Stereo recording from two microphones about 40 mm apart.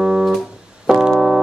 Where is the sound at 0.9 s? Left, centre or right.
Centre.